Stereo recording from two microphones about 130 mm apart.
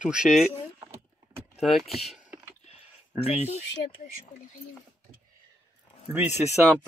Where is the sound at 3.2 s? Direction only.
50° left (ahead or behind).